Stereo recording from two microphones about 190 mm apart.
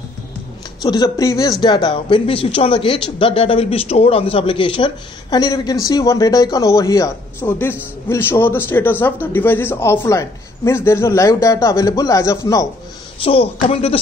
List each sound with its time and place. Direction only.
0.8 s a man's voice: 20° left (ahead or behind)
13.2 s speech: 30° left (ahead or behind)